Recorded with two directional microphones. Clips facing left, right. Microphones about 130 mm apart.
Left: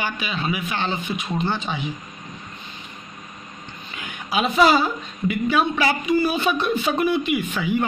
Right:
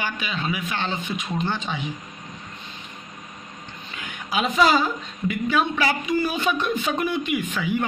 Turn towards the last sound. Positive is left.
turn(degrees=15)  # may be behind; listen again after turning